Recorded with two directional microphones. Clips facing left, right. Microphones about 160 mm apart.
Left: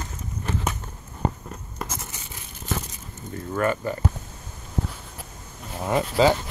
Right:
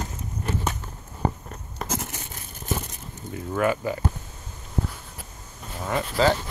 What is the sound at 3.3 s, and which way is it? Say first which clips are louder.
Speech: right 1 dB; 5° right (ahead or behind).